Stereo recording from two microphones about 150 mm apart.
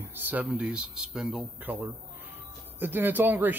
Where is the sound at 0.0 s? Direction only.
15° right (ahead or behind).